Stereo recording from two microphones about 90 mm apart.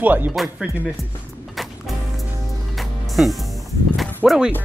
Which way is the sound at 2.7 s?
Centre (ahead or behind).